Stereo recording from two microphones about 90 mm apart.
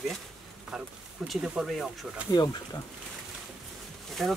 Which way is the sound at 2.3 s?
50° left (ahead or behind).